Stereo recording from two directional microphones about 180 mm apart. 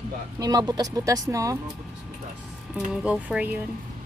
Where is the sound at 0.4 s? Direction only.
20° right (ahead or behind).